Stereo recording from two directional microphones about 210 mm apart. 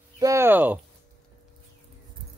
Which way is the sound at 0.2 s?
15° right (ahead or behind).